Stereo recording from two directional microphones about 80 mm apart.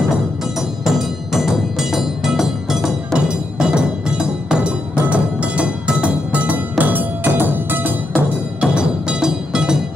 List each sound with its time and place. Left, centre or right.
0.6 s music: centre; by 7.9 s right
8.5 s music: centre